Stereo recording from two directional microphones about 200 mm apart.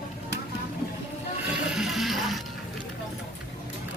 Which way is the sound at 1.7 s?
Centre (ahead or behind).